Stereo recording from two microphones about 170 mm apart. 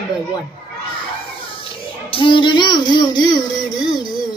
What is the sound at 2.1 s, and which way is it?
A woman's voice, 30° left (ahead or behind).